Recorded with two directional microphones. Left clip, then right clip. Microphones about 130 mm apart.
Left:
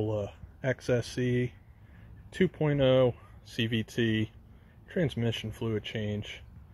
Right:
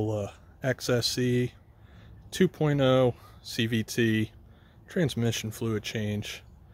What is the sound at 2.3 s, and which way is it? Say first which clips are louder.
Speech: right 2 dB; 50° right (ahead or behind).